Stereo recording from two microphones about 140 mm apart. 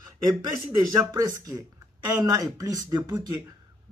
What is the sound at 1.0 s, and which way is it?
Speech, 25° right (ahead or behind).